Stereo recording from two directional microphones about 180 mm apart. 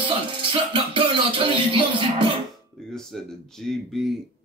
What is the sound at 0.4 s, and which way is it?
Music, 30° right (ahead or behind).